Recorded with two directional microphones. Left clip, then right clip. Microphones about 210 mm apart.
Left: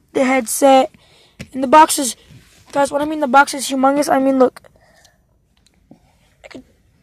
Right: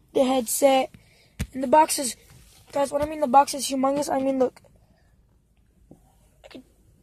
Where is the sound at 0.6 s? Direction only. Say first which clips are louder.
Left 9 dB; 10° left (ahead or behind).